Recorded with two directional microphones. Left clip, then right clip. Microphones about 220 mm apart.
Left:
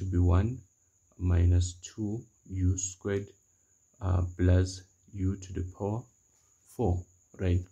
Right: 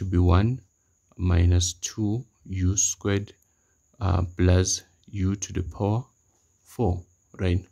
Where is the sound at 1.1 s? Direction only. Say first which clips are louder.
Right 6 dB; 40° right (ahead or behind).